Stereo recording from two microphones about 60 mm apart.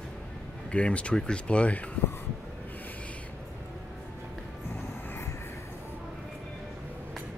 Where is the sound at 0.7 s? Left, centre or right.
Centre.